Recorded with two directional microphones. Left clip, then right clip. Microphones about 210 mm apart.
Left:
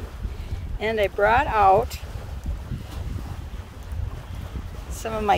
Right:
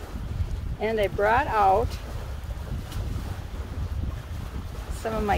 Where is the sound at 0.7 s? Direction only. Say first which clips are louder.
Left 2 dB; 55° left (ahead or behind).